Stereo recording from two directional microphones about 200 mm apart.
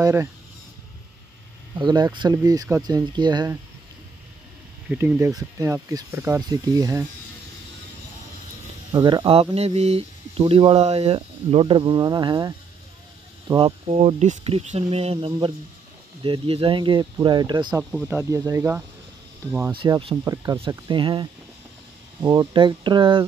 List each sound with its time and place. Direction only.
0.0 s speech: 15° right (ahead or behind)
1.8 s speech: 20° right (ahead or behind)
4.8 s speech: 10° right (ahead or behind)
8.9 s speech: 20° right (ahead or behind)
19.7 s speech: 25° right (ahead or behind)